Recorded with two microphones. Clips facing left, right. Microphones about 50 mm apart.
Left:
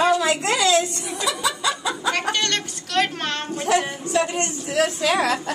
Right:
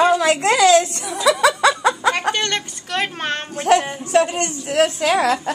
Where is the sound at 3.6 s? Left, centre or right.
Right.